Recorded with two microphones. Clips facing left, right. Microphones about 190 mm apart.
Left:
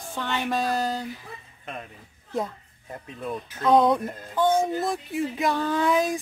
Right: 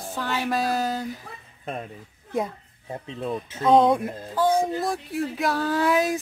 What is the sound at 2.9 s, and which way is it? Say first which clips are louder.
Speech: right 3 dB; 25° right (ahead or behind).